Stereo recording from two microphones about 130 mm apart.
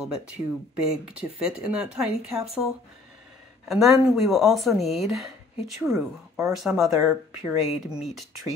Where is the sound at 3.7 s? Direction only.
Centre (ahead or behind).